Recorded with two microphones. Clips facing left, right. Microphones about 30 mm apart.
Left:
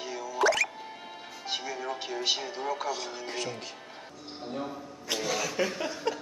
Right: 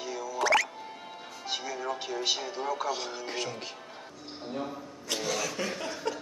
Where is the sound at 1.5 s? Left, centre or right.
Centre.